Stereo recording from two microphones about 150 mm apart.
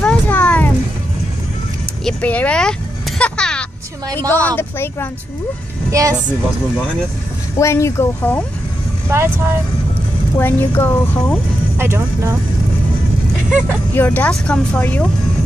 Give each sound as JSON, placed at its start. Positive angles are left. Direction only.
{"t": 0.0, "sound": "a sound", "side_deg": 10}
{"t": 2.0, "sound": "speech", "side_deg": 10}
{"t": 3.2, "sound": "a sound", "side_deg": 5}
{"t": 4.5, "sound": "speech", "side_deg": 15}
{"t": 5.9, "sound": "speech", "side_deg": -20}
{"t": 7.5, "sound": "speech", "side_deg": 20}
{"t": 9.1, "sound": "speech", "side_deg": -15}
{"t": 10.3, "sound": "speech", "side_deg": 15}
{"t": 11.8, "sound": "speech", "side_deg": -20}
{"t": 13.5, "sound": "speech", "side_deg": -5}
{"t": 13.9, "sound": "speech", "side_deg": 10}